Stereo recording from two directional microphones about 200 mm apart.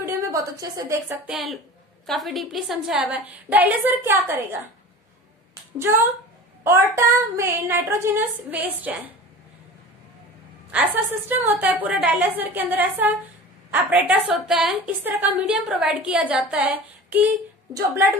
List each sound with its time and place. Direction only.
0.0 s a woman's voice: 15° right (ahead or behind)
1.3 s a woman's voice: centre (ahead or behind)
5.8 s a woman's voice: 10° right (ahead or behind)
10.7 s a woman's voice: 10° right (ahead or behind)